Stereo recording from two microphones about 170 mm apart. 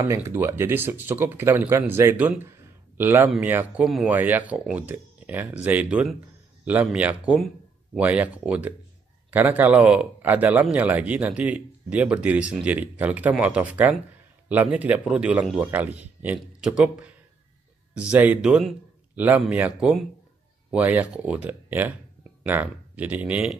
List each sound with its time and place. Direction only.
0.0 s a man's voice: 15° right (ahead or behind)